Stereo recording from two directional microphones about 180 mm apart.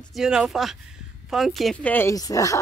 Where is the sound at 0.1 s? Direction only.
5° right (ahead or behind).